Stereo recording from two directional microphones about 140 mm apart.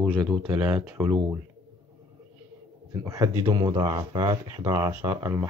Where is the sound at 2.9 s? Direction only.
25° right (ahead or behind).